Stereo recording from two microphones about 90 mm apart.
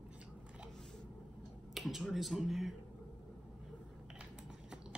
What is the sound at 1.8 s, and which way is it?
Speech, centre (ahead or behind).